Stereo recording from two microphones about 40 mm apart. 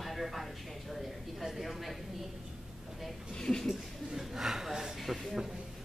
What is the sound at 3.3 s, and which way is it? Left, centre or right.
Speech, centre.